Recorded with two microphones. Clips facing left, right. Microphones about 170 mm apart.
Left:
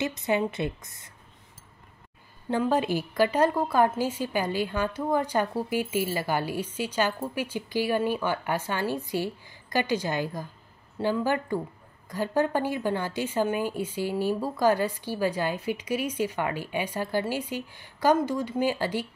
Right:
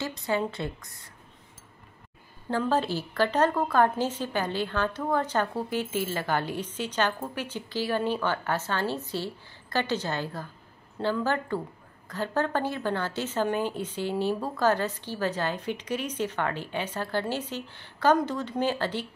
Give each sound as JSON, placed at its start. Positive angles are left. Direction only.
{"t": 0.0, "sound": "a woman's voice", "side_deg": 20}
{"t": 2.5, "sound": "a woman's voice", "side_deg": 15}